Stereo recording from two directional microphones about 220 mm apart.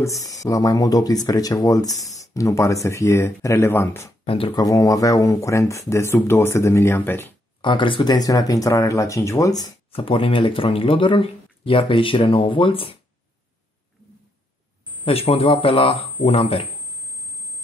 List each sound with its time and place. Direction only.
0.0 s speech: 15° left (ahead or behind)
4.3 s speech: 20° left (ahead or behind)
7.6 s speech: 20° left (ahead or behind)
15.0 s speech: 25° left (ahead or behind)